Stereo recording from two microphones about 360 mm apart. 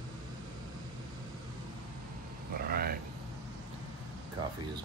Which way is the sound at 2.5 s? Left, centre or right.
Right.